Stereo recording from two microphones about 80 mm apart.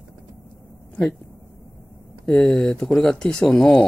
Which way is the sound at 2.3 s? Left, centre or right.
Centre.